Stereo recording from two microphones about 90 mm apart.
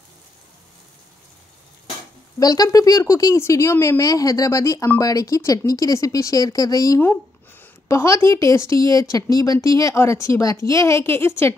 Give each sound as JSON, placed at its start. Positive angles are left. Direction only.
{"t": 2.4, "sound": "speech", "side_deg": 45}
{"t": 4.0, "sound": "speech", "side_deg": 40}
{"t": 7.0, "sound": "a sound", "side_deg": 25}
{"t": 7.9, "sound": "speech", "side_deg": 30}